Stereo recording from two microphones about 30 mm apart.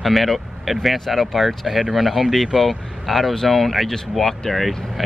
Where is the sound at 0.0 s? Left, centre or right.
Centre.